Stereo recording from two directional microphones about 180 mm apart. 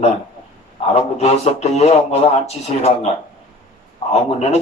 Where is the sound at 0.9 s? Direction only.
35° left (ahead or behind).